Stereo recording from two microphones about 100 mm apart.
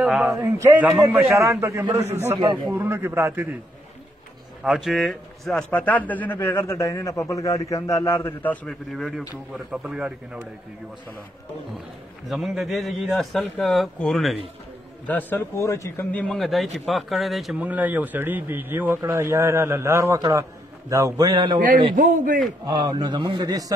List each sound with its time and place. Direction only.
0.4 s a man's voice: 30° right (ahead or behind)
0.7 s a man's voice: 15° right (ahead or behind)
1.1 s a man's voice: 25° right (ahead or behind)
4.6 s a man's voice: 5° right (ahead or behind); by 6.4 s 15° left (ahead or behind)
6.4 s a man's voice: 30° left (ahead or behind)
8.6 s a man's voice: centre (ahead or behind)
12.3 s a man's voice: centre (ahead or behind)
15.0 s speech: 20° left (ahead or behind)
16.3 s a man's voice: centre (ahead or behind)
17.6 s a man's voice: 15° right (ahead or behind)
20.2 s a man's voice: 40° right (ahead or behind)